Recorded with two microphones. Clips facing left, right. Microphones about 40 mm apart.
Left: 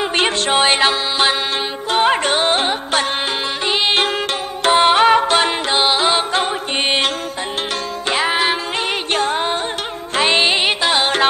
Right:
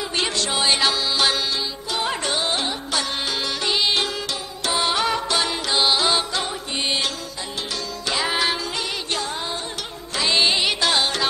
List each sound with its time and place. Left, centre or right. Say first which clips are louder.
0.0 s music: left 7 dB; left
1.9 s music: left 10 dB; left
6.3 s music: left 7 dB; left
8.1 s music: left 5 dB; left